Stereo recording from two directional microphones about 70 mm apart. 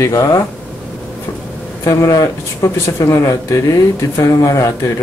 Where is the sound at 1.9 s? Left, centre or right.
Left.